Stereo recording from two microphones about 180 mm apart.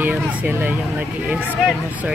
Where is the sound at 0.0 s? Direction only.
10° right (ahead or behind).